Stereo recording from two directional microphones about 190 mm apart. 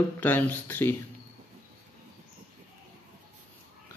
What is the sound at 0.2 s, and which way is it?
Speech, 10° left (ahead or behind).